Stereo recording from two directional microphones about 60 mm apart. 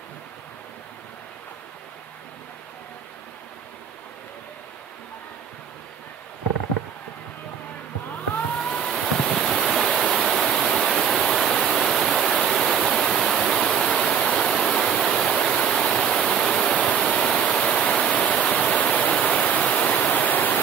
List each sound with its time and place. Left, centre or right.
8.5 s waves: centre
17.1 s waterfall: centre; by 20.6 s left